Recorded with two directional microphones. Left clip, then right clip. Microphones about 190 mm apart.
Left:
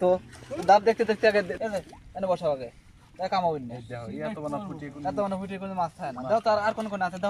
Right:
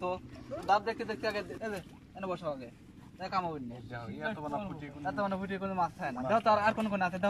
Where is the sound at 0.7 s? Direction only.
50° left (ahead or behind).